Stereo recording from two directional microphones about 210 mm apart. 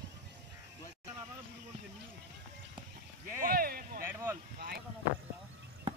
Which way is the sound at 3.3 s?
45° right (ahead or behind).